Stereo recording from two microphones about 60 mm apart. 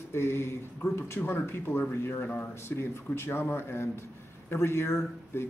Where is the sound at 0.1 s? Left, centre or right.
Left.